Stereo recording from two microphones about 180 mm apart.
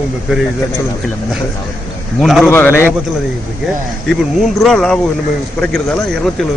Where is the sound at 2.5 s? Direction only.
10° left (ahead or behind).